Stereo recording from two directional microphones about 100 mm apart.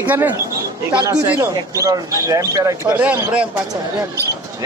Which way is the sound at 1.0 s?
35° right (ahead or behind).